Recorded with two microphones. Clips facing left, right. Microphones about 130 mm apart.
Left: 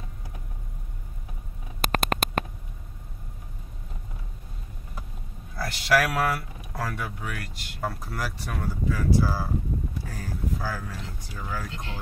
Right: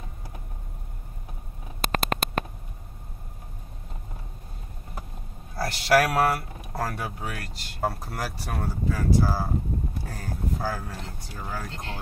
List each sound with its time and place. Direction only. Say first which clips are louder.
1.8 s a sound: left 1 dB; 50° left (ahead or behind)
5.6 s speech: right 2 dB; 35° right (ahead or behind)
10.0 s speech: even; 45° right (ahead or behind)
11.1 s speech: left 1 dB; 35° right (ahead or behind)